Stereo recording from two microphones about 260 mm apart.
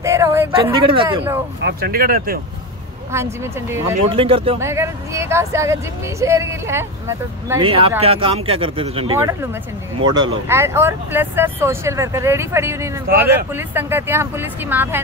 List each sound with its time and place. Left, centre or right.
0.0 s speech: centre
1.6 s speech: right
3.1 s speech: centre
4.1 s speech: right
4.6 s speech: centre
13.1 s speech: right
13.5 s speech: centre